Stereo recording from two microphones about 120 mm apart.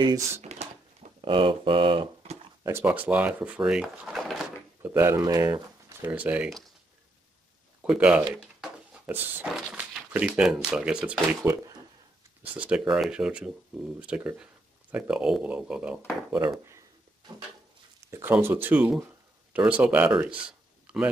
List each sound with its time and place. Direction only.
0.4 s drawer open or close: 65° right (ahead or behind)
1.2 s speech: 45° right (ahead or behind)
2.6 s speech: 15° right (ahead or behind); by 4.5 s centre (ahead or behind)
4.8 s speech: 15° right (ahead or behind)
5.1 s speech: 30° right (ahead or behind)
6.0 s speech: 10° right (ahead or behind)
7.8 s speech: 5° right (ahead or behind)
11.4 s speech: 30° right (ahead or behind)
12.5 s speech: 10° right (ahead or behind)
16.3 s speech: 25° right (ahead or behind)
18.1 s speech: 20° right (ahead or behind)
20.4 s a sound: 10° right (ahead or behind)